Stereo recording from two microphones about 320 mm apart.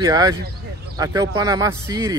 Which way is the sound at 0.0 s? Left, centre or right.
Centre.